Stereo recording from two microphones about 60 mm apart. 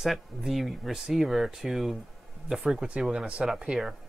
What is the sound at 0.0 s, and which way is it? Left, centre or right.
Speech, centre.